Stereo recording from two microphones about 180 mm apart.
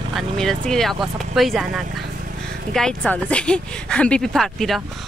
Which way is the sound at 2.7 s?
5° left (ahead or behind).